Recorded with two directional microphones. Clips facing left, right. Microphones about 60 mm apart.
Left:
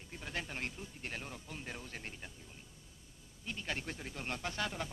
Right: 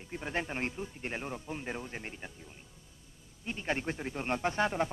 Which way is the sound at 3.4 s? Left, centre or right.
Right.